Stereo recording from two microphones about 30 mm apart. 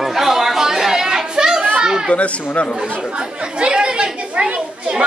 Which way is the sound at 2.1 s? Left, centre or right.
Left.